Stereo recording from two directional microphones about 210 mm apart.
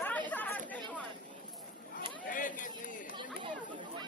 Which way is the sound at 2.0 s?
40° left (ahead or behind).